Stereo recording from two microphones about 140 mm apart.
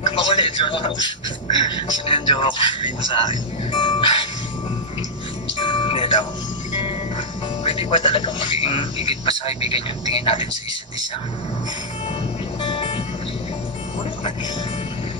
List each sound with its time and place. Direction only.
0.2 s a sound: 35° left (ahead or behind)
1.6 s speech: 40° left (ahead or behind)
5.6 s music: 35° left (ahead or behind)
7.6 s speech: 40° left (ahead or behind)
12.6 s music: 40° left (ahead or behind)